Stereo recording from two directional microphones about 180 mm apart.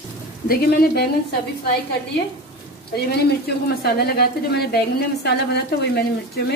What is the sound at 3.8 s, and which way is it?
A woman's voice, 60° left (ahead or behind).